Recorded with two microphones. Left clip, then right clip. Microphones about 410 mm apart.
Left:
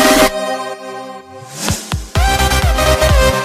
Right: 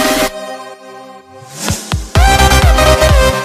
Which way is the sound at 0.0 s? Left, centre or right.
Left.